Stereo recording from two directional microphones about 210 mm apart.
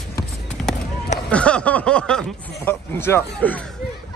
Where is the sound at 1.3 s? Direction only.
5° left (ahead or behind).